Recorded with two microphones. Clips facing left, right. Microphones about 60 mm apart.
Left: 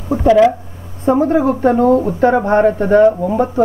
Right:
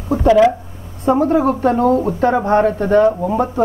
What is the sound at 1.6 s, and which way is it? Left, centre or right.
Speech, left.